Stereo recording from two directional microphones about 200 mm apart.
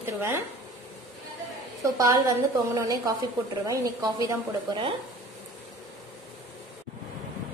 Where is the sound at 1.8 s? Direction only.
20° right (ahead or behind).